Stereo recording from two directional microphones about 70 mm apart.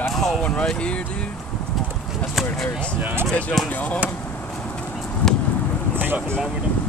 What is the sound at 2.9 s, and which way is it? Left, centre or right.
Speech, right.